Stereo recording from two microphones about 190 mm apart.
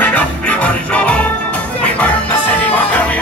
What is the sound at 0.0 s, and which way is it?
Music, 10° left (ahead or behind).